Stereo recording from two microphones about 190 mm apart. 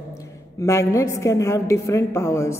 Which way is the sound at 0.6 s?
15° left (ahead or behind).